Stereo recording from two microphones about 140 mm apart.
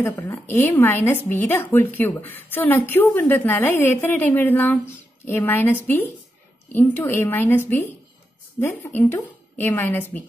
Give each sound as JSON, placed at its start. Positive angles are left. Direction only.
{"t": 0.0, "sound": "speech", "side_deg": 15}